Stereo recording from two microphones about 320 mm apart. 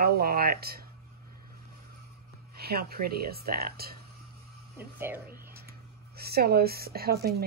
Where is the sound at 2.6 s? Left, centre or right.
Right.